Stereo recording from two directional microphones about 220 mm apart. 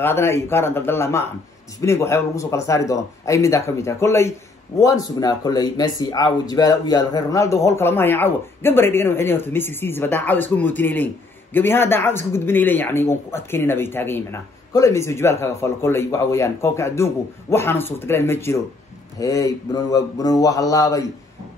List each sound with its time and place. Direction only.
0.0 s speech: 10° left (ahead or behind)